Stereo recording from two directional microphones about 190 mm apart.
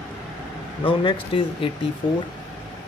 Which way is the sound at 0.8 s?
25° left (ahead or behind).